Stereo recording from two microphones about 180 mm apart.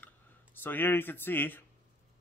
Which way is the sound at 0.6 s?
10° left (ahead or behind).